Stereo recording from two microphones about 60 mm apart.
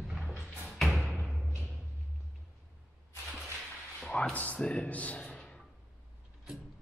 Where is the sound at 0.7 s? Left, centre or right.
Centre.